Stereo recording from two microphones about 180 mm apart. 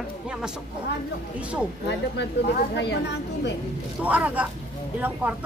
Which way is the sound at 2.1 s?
70° left (ahead or behind).